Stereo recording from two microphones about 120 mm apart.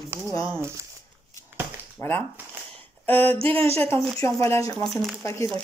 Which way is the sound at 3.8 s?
20° left (ahead or behind).